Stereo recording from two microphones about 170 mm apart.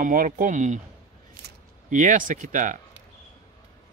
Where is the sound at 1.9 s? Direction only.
50° right (ahead or behind).